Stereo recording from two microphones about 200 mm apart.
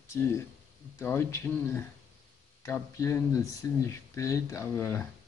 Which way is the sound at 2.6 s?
15° left (ahead or behind).